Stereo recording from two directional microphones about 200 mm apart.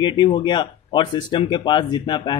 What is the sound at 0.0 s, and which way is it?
Speech, 25° left (ahead or behind).